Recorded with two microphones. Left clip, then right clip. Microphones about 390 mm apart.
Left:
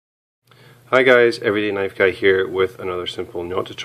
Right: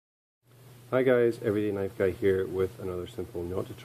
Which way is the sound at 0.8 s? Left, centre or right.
Centre.